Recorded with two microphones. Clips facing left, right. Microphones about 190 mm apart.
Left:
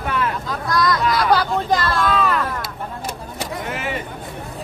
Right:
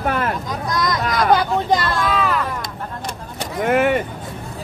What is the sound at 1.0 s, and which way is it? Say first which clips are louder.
Chatter: even; 45° right (ahead or behind).